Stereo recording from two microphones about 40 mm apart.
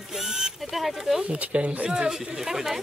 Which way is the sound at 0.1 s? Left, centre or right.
Centre.